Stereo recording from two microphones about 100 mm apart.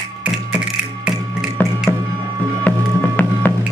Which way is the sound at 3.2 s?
20° left (ahead or behind).